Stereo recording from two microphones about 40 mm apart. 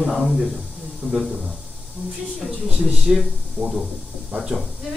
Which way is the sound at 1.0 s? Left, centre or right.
Centre.